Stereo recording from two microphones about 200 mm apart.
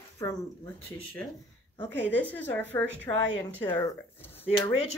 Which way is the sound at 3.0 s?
20° left (ahead or behind).